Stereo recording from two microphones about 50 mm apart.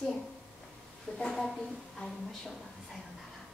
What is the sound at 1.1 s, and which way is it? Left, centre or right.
A woman's voice, centre.